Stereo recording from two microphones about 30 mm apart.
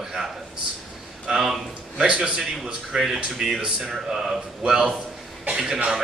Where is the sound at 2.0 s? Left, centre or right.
Right.